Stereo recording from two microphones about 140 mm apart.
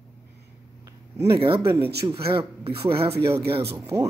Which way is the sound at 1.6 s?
15° right (ahead or behind).